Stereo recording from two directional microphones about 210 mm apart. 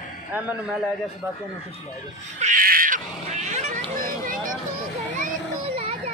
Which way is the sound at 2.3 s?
35° right (ahead or behind).